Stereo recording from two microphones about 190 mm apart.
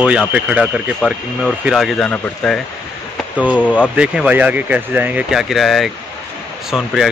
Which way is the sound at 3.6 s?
10° left (ahead or behind).